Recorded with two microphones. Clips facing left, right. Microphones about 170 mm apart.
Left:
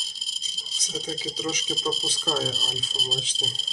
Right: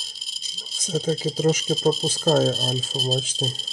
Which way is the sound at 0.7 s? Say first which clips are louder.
Right 9 dB; 50° right (ahead or behind).